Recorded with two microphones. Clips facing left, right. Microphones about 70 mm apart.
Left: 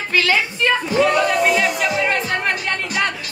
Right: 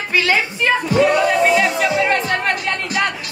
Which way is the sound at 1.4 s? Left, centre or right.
Centre.